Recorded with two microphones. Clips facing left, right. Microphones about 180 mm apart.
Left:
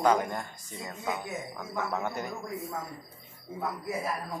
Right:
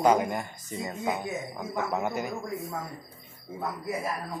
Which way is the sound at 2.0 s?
10° right (ahead or behind).